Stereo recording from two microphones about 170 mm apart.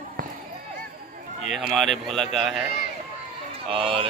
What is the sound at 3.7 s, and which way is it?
Speech, 30° right (ahead or behind).